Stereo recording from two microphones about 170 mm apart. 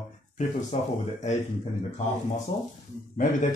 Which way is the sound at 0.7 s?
40° left (ahead or behind).